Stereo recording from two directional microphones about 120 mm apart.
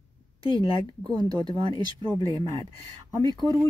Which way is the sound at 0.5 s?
35° right (ahead or behind).